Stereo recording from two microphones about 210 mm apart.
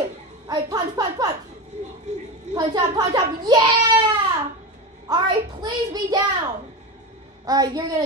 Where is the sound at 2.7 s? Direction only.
20° right (ahead or behind).